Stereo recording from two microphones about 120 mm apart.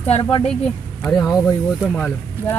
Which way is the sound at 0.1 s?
50° left (ahead or behind).